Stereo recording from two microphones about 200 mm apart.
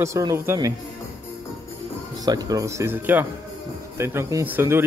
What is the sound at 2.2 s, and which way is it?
Speech, 20° right (ahead or behind).